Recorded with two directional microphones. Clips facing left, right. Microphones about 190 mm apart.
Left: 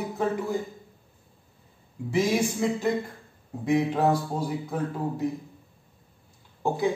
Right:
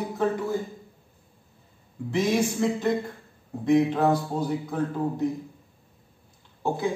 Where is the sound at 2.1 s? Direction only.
5° left (ahead or behind).